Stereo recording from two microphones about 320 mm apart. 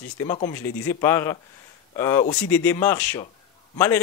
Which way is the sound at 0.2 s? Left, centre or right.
Centre.